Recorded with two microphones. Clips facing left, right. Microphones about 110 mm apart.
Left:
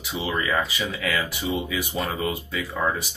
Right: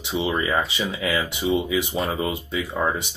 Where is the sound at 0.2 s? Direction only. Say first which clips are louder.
Right 1 dB; 25° right (ahead or behind).